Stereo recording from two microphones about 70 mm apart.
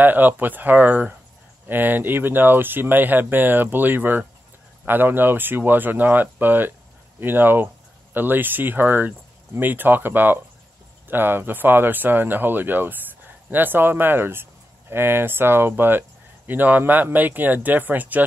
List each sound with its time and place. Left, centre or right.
0.0 s speech: right